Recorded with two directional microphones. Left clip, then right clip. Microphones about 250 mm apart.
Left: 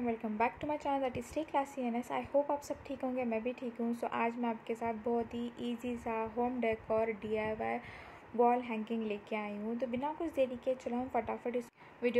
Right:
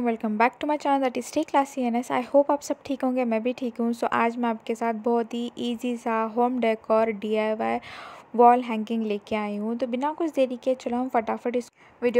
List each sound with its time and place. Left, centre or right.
0.0 s speech: right